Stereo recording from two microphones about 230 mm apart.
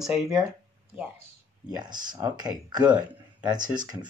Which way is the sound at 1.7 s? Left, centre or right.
Centre.